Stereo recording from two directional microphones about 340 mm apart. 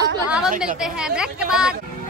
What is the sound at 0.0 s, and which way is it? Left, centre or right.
A woman's voice, centre.